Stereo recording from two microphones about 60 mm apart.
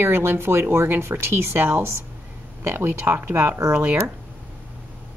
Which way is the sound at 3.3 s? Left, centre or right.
Right.